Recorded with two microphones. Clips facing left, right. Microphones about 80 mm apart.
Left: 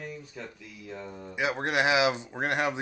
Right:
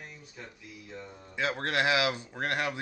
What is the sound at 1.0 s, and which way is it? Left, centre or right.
Speech, left.